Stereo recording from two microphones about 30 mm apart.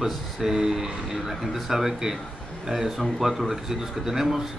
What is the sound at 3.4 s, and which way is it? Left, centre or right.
Speech, centre.